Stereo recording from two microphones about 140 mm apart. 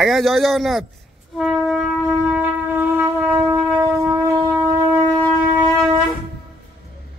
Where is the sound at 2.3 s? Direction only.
10° right (ahead or behind).